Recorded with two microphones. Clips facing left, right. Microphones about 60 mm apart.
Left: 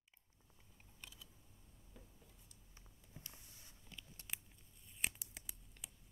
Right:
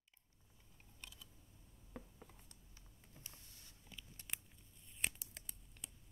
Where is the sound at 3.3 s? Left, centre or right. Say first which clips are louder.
Left 1 dB; centre.